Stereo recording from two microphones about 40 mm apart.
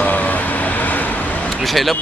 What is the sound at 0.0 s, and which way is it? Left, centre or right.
Vehicle, left.